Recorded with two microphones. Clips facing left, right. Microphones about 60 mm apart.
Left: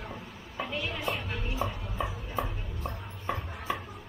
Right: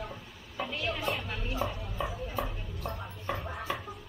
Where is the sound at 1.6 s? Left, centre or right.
Centre.